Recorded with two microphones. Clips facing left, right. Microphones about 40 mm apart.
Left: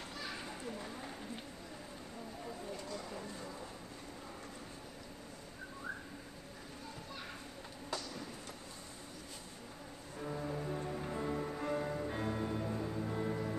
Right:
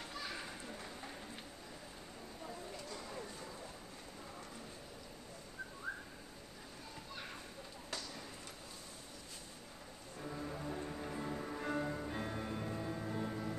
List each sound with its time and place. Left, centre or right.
10.2 s music: centre
11.6 s music: centre
13.1 s music: centre